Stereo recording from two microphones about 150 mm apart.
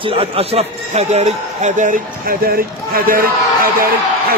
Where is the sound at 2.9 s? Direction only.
75° right (ahead or behind).